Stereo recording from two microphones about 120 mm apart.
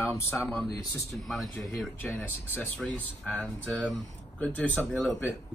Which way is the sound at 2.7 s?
5° left (ahead or behind).